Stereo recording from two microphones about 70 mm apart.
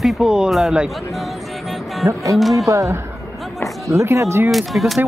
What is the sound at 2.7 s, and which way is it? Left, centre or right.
Speech, right.